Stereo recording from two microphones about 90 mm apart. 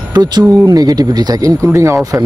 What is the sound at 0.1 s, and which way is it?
Speech, 50° right (ahead or behind).